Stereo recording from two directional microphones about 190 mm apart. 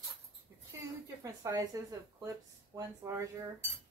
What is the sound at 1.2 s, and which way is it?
Speech, 15° right (ahead or behind).